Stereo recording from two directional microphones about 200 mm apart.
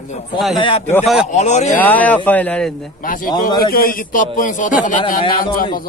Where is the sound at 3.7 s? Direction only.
45° left (ahead or behind).